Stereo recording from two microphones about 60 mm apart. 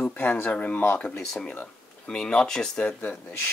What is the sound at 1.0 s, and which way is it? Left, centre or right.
Speech, centre.